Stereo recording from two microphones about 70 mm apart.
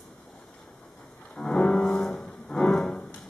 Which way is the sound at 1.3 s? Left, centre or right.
Centre.